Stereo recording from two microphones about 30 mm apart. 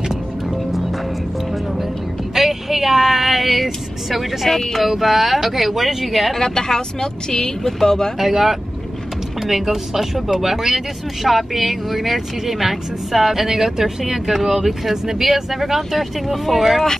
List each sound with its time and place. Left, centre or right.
2.3 s vehicle: centre
4.7 s speech: centre
6.3 s speech: centre
8.2 s speech: centre